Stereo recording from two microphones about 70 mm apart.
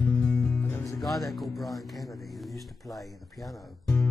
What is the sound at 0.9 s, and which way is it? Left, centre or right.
Speech, centre.